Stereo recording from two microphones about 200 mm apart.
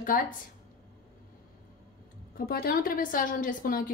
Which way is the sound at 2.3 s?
50° left (ahead or behind).